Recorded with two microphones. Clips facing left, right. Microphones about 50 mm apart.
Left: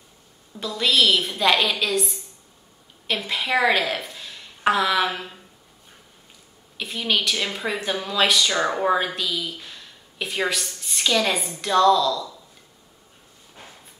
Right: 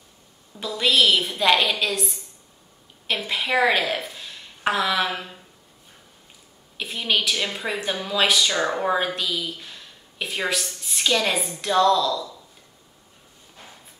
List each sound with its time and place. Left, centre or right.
0.6 s a woman's voice: centre
6.8 s speech: centre